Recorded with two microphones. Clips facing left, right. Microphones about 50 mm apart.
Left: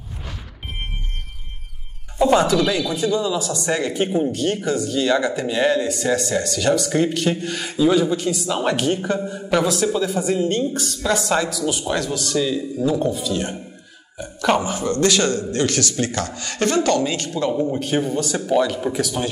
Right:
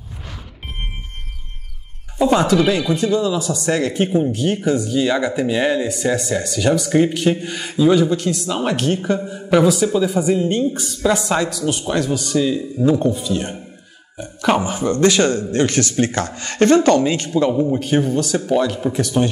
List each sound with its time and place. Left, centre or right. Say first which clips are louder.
2.1 s speech: even; centre
2.5 s a man's voice: right 3 dB; centre
3.2 s a man's voice: right 3 dB; centre; by 17.5 s right
17.5 s a man's voice: right 3 dB; centre